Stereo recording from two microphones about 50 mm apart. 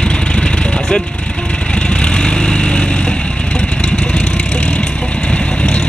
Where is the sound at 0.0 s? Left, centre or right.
Centre.